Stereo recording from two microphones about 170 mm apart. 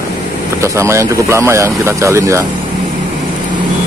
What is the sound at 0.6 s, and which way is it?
Speech, 15° right (ahead or behind).